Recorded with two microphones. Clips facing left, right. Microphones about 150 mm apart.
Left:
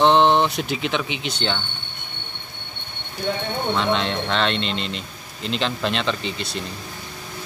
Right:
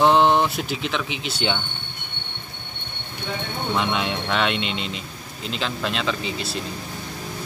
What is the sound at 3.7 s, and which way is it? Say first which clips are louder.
Speech: left 1 dB; 10° right (ahead or behind).